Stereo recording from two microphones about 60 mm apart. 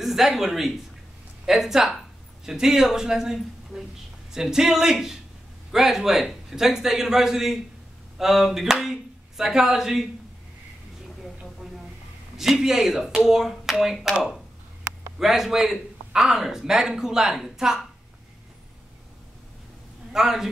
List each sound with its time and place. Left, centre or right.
0.0 s speech: centre
1.4 s a sound: centre
2.4 s a man's voice: centre
8.2 s a sound: centre
9.4 s a man's voice: centre
12.4 s a man's voice: centre
15.1 s a man's voice: centre
20.1 s speech: centre